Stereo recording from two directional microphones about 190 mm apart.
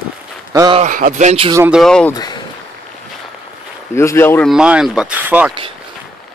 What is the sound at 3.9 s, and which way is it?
Speech, 15° left (ahead or behind).